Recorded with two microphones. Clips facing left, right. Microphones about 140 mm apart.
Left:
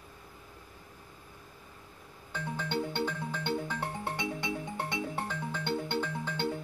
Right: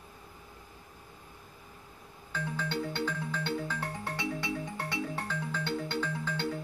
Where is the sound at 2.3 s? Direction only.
20° left (ahead or behind).